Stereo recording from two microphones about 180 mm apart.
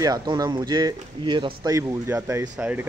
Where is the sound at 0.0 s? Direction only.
20° right (ahead or behind).